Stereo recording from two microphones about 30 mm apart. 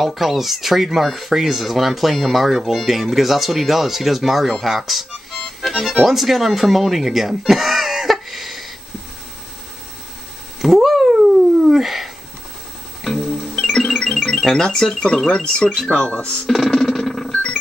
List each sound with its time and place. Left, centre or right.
0.0 s speech: centre
8.1 s a sound: centre
10.6 s cat: centre
11.6 s dog: centre
13.2 s music: centre
14.5 s speech: centre; by 16.3 s left
16.4 s a sound: centre